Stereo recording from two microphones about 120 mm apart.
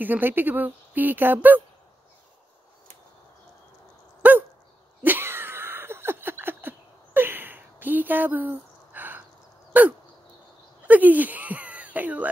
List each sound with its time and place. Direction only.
0.0 s speech: 15° right (ahead or behind)
4.2 s dog: 15° right (ahead or behind)
5.0 s a sound: 20° right (ahead or behind)